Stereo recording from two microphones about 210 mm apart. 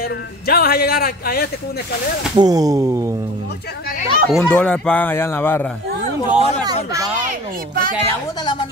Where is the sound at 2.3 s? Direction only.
20° right (ahead or behind).